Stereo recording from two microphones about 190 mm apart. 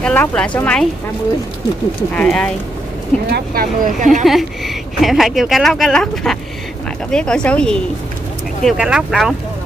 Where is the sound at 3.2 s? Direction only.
55° right (ahead or behind).